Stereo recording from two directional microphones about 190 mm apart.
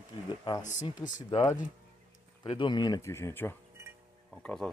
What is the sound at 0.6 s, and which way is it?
Speech, 40° left (ahead or behind).